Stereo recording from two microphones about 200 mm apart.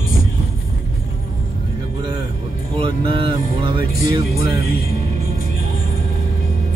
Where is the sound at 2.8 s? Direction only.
25° right (ahead or behind).